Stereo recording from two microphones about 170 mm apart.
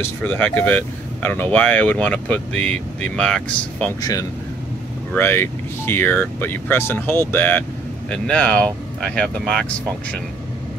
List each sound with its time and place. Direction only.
0.0 s speech: 10° left (ahead or behind)
4.0 s speech: 20° left (ahead or behind); by 9.7 s centre (ahead or behind)